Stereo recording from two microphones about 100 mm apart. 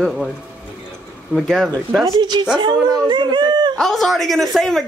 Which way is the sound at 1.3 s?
Centre (ahead or behind).